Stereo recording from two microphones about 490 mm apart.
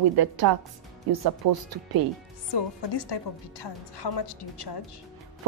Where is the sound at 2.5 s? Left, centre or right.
Left.